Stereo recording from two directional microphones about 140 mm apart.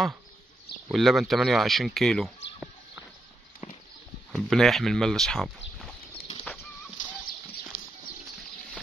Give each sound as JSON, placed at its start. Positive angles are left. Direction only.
{"t": 0.9, "sound": "speech", "side_deg": 0}
{"t": 3.6, "sound": "clip-clop", "side_deg": 50}
{"t": 4.3, "sound": "speech", "side_deg": 0}
{"t": 6.1, "sound": "bird flight", "side_deg": 35}